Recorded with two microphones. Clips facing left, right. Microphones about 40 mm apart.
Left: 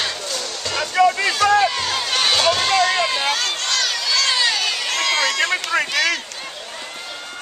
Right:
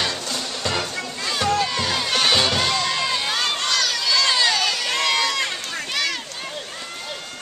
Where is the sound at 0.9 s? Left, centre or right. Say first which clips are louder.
Left 15 dB; left.